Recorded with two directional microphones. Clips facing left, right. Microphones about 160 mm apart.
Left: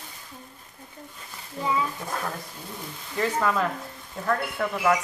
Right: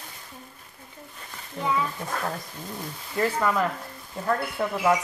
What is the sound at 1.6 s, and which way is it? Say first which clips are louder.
Speech: even; 10° left (ahead or behind).